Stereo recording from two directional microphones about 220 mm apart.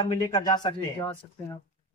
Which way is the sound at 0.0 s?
20° left (ahead or behind).